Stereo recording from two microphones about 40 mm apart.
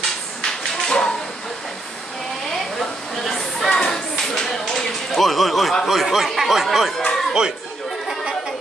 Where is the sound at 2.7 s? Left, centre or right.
Centre.